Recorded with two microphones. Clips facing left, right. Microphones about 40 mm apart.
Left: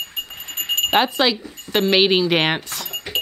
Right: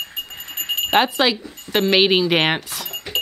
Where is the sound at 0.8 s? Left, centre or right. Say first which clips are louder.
Right 1 dB; centre.